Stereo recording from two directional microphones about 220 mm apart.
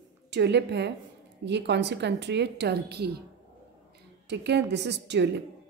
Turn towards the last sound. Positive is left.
turn(degrees=-50)  # may be behind; listen again after turning